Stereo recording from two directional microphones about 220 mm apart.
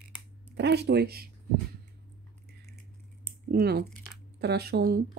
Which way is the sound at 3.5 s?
45° right (ahead or behind).